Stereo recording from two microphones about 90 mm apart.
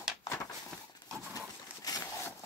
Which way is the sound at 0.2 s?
40° left (ahead or behind).